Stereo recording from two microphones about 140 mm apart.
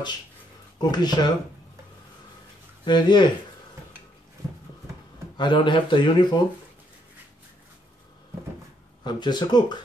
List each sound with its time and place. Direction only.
0.7 s speech: 30° left (ahead or behind)
2.8 s speech: 30° left (ahead or behind)
5.4 s speech: 35° left (ahead or behind)
9.0 s speech: 30° left (ahead or behind)